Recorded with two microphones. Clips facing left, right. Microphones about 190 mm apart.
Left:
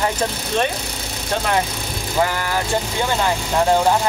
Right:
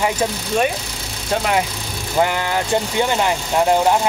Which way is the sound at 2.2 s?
20° right (ahead or behind).